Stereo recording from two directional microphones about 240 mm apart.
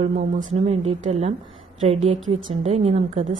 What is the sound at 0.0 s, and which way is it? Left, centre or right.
A woman's voice, right.